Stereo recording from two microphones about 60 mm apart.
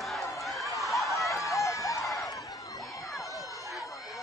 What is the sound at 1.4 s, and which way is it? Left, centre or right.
Run, left.